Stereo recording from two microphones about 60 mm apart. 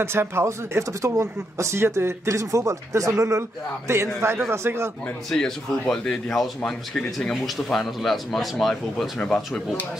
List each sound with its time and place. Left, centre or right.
0.0 s speech: right
3.1 s speech: right
5.3 s speech: centre